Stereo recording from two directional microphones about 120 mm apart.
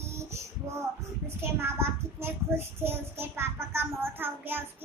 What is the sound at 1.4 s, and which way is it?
Child singing, 20° right (ahead or behind).